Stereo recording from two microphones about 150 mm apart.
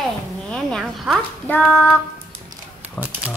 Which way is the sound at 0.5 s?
5° left (ahead or behind).